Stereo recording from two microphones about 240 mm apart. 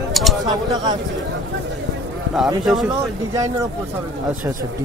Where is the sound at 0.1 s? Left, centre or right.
Centre.